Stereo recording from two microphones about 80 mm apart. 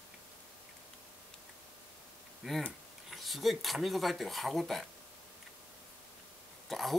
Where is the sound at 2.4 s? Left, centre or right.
Centre.